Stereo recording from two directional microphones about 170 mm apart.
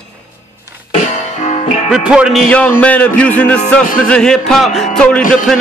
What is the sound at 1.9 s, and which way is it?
Speech, 5° right (ahead or behind).